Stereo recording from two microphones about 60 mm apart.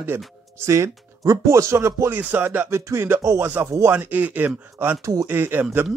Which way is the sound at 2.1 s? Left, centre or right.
Right.